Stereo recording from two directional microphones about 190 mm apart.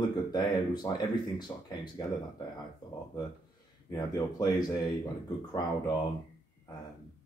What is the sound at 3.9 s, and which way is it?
Speech, 20° left (ahead or behind).